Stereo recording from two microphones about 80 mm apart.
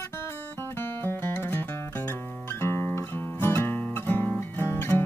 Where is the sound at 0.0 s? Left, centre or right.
Left.